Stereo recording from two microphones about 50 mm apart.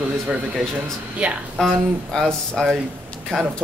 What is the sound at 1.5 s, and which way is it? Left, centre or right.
Speech, centre.